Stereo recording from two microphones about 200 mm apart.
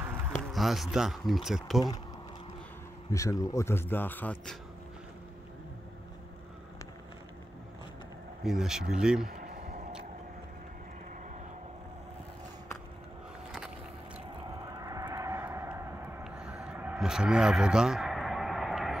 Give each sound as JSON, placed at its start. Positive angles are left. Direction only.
{"t": 0.5, "sound": "speech", "side_deg": 0}
{"t": 3.1, "sound": "a man's voice", "side_deg": 15}
{"t": 8.5, "sound": "speech", "side_deg": 0}
{"t": 9.3, "sound": "a sound", "side_deg": -50}
{"t": 14.7, "sound": "vehicle", "side_deg": -15}